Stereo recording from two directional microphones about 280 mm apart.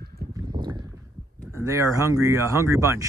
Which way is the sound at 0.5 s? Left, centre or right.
Centre.